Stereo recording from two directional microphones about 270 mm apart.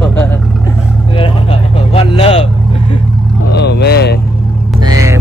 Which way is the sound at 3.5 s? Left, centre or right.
Left.